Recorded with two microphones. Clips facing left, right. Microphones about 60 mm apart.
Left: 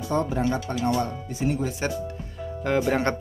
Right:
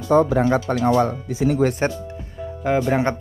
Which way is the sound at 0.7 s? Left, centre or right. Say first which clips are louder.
Right 7 dB; right.